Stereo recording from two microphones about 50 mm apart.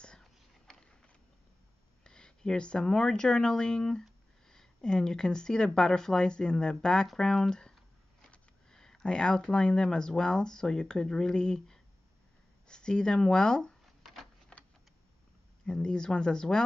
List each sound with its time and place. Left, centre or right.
2.0 s speech: centre
13.8 s a sound: centre
15.6 s speech: centre